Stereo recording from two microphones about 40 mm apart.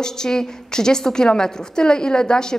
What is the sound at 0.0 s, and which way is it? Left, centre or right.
A woman's voice, centre.